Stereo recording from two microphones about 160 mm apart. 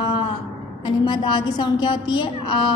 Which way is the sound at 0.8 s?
30° left (ahead or behind).